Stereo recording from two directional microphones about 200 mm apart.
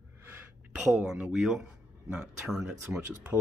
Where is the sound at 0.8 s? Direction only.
5° right (ahead or behind).